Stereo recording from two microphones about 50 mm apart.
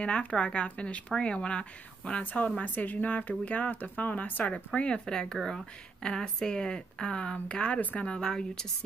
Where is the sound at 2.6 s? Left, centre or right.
Left.